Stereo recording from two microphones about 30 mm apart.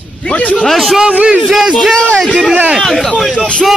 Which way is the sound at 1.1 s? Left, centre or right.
Right.